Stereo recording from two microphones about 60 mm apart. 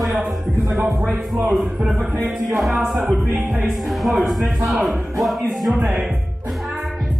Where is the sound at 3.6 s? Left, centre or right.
Centre.